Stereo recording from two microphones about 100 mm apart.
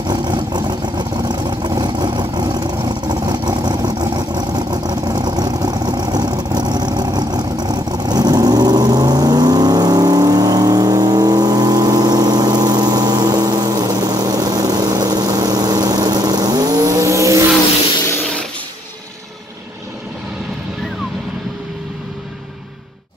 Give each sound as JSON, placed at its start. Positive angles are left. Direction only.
{"t": 0.0, "sound": "vehicle", "side_deg": -45}